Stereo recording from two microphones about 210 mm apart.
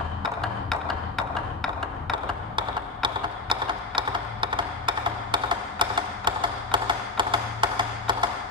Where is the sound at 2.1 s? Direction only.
25° right (ahead or behind).